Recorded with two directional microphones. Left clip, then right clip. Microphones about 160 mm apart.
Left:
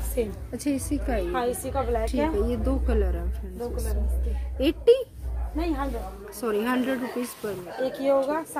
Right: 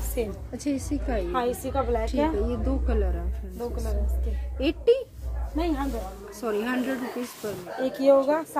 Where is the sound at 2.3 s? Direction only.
15° left (ahead or behind).